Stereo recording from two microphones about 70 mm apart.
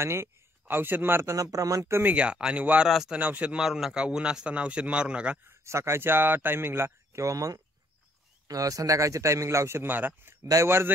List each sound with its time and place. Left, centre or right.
0.0 s a man's voice: right
1.3 s speech: right
2.0 s a man's voice: centre
3.5 s a man's voice: centre
5.6 s a man's voice: right
9.8 s speech: right
10.5 s speech: right